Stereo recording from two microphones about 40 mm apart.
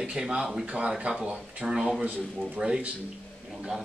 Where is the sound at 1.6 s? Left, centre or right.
Centre.